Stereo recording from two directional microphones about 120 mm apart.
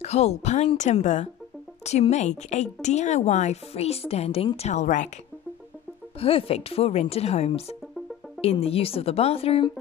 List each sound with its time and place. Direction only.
0.0 s speech: 65° left (ahead or behind)
4.6 s speech: 75° left (ahead or behind)
6.1 s speech: 55° left (ahead or behind)